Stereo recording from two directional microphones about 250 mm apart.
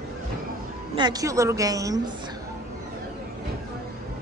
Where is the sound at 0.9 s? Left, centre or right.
Centre.